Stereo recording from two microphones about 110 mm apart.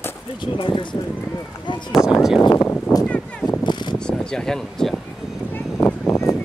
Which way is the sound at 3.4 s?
40° left (ahead or behind).